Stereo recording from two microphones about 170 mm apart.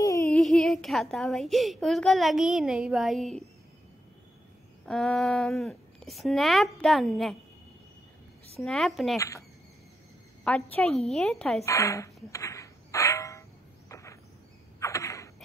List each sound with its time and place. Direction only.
0.0 s a sound: 20° left (ahead or behind)
0.3 s speech: centre (ahead or behind)
4.8 s speech: 5° left (ahead or behind)
8.5 s speech: centre (ahead or behind)
10.4 s speech: 5° left (ahead or behind)
11.6 s a sound: 20° left (ahead or behind)